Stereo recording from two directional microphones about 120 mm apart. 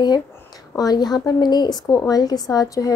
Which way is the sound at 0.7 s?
35° left (ahead or behind).